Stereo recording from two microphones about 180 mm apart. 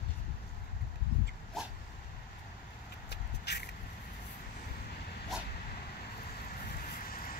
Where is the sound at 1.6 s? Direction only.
Centre (ahead or behind).